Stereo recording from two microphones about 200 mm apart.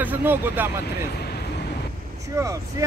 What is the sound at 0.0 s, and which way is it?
Speech, 10° right (ahead or behind).